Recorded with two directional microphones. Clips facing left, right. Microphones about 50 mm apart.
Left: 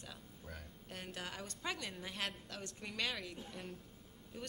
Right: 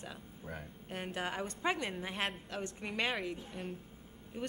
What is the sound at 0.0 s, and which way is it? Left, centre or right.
A woman's voice, right.